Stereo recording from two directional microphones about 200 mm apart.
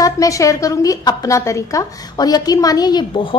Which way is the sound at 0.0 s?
15° left (ahead or behind).